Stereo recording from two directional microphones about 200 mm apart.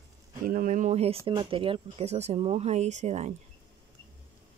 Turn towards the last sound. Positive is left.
turn(degrees=-35)  # may be behind; listen again after turning